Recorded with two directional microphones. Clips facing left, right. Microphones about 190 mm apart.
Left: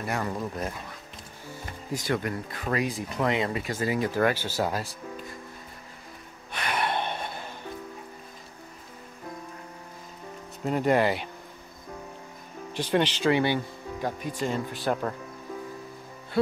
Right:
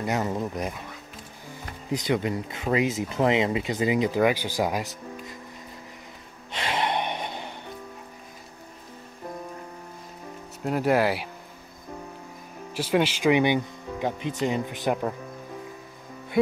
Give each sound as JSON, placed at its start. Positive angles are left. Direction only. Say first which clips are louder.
{"t": 0.0, "sound": "speech", "louder": "right 3 dB", "side_deg": -20}
{"t": 1.9, "sound": "speech", "louder": "right 3 dB", "side_deg": -20}
{"t": 6.5, "sound": "gasp", "louder": "right 2 dB", "side_deg": -25}
{"t": 10.6, "sound": "speech", "louder": "right 1 dB", "side_deg": -5}
{"t": 12.7, "sound": "speech", "louder": "right 2 dB", "side_deg": -5}